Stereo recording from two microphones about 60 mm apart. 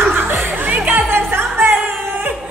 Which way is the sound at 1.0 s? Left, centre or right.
Right.